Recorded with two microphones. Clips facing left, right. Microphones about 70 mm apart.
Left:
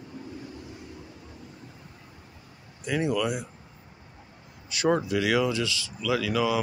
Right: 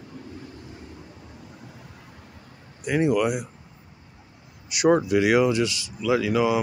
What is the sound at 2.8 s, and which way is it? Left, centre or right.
Speech, right.